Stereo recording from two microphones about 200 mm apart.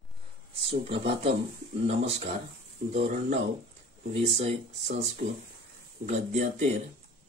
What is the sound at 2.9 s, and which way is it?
Speech, 35° right (ahead or behind).